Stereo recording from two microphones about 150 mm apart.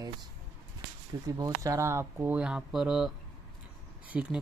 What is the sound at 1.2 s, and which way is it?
Speech, 25° right (ahead or behind).